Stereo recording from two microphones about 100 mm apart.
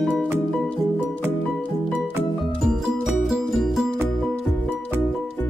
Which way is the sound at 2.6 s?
5° right (ahead or behind).